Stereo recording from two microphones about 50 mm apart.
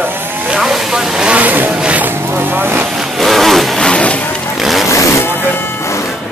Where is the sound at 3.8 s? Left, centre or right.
Left.